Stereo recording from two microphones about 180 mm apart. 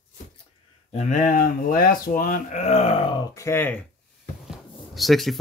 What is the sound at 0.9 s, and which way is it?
Speech, 45° left (ahead or behind).